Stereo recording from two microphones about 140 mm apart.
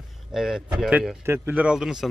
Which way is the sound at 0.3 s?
5° right (ahead or behind).